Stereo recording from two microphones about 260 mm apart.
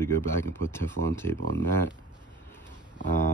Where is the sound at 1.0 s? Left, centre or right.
Right.